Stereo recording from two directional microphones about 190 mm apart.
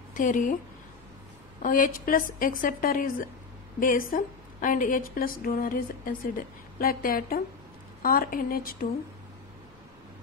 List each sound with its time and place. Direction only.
0.1 s a woman's voice: 45° left (ahead or behind)
1.6 s a woman's voice: 45° left (ahead or behind)